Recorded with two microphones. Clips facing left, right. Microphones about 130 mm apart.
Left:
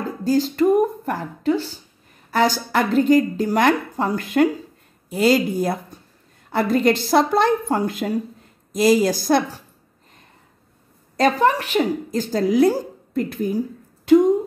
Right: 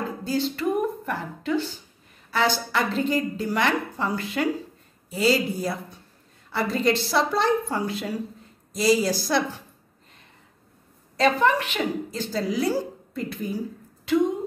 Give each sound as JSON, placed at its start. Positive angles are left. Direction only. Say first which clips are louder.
{"t": 0.2, "sound": "a woman's voice", "louder": "left 9 dB", "side_deg": 40}
{"t": 11.1, "sound": "a woman's voice", "louder": "left 3 dB", "side_deg": 40}